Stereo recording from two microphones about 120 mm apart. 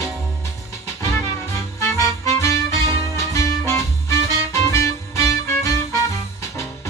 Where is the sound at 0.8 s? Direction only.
25° left (ahead or behind).